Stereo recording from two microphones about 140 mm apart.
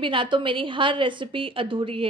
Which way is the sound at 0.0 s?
35° right (ahead or behind).